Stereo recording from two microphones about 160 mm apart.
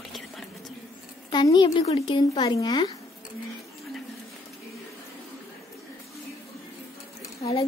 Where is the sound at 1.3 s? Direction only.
25° left (ahead or behind).